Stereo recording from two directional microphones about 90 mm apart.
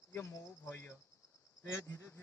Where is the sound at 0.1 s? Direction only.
30° left (ahead or behind).